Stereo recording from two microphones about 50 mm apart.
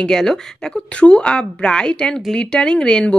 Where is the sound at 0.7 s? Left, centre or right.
Left.